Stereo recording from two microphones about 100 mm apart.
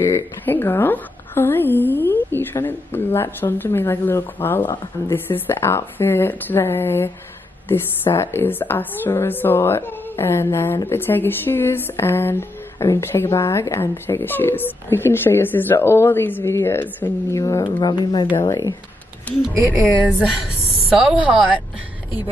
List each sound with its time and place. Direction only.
0.0 s a woman's voice: 20° left (ahead or behind)
17.4 s speech: 35° left (ahead or behind)
17.6 s speech: 50° left (ahead or behind)
18.5 s speech: 35° left (ahead or behind)
19.3 s speech: 15° left (ahead or behind)
21.0 s a woman's voice: 10° right (ahead or behind)